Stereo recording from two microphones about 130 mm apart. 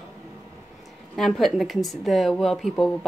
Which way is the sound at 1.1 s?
Centre (ahead or behind).